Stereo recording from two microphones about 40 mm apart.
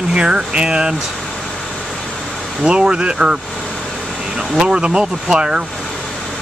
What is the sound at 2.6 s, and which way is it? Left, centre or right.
Speech, right.